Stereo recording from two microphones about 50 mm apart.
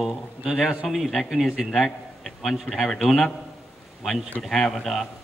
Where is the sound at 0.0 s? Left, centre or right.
Centre.